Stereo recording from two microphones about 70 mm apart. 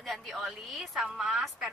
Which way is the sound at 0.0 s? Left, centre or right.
Centre.